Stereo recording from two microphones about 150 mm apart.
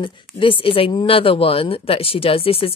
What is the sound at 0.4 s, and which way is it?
Speech, 35° left (ahead or behind).